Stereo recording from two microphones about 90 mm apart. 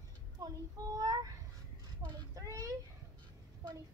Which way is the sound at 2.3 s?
40° right (ahead or behind).